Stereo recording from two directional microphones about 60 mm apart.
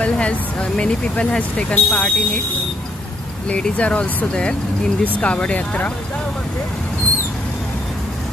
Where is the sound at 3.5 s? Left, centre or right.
Centre.